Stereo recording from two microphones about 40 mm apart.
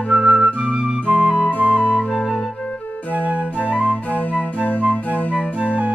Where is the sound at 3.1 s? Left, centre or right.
Right.